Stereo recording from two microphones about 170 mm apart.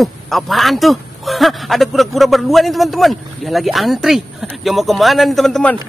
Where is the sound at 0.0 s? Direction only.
Centre (ahead or behind).